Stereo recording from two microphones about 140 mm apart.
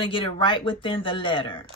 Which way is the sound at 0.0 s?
35° left (ahead or behind).